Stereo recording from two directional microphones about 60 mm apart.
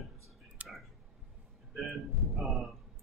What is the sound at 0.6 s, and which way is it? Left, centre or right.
Clicking, right.